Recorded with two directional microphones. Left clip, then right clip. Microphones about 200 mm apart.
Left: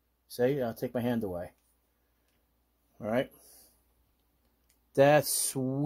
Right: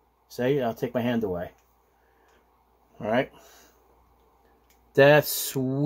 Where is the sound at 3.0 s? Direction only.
45° left (ahead or behind).